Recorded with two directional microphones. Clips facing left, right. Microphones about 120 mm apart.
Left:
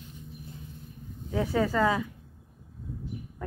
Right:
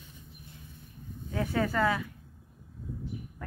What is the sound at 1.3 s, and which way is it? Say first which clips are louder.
Speech: left 3 dB; 10° left (ahead or behind).